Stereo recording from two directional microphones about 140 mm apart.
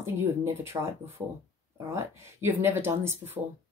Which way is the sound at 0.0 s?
20° right (ahead or behind).